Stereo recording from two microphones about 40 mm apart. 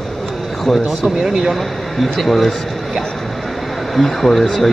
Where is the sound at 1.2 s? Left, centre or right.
Centre.